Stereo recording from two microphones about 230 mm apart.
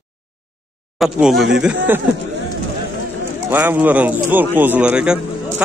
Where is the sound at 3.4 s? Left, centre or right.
Centre.